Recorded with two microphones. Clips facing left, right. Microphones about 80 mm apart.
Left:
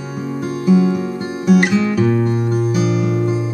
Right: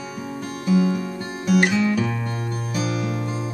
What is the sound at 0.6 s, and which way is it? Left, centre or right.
Music, left.